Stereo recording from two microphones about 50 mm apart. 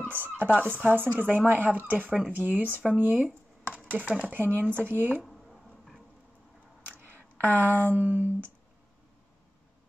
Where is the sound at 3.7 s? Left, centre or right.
Right.